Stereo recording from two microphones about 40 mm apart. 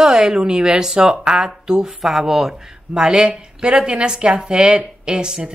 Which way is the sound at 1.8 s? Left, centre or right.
Centre.